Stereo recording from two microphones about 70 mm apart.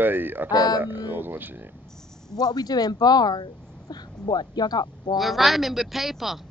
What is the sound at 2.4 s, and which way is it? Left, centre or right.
Speech, left.